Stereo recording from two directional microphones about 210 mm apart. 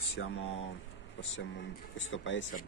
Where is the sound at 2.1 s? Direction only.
60° left (ahead or behind).